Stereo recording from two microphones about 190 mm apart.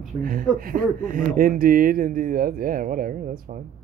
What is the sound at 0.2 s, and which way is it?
Speech, 45° right (ahead or behind).